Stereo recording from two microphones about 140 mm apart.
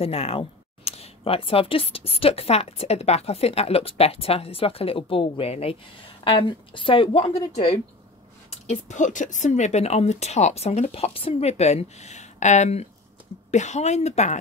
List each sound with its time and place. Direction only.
0.0 s a woman's voice: 45° left (ahead or behind)
8.5 s speech: 55° left (ahead or behind)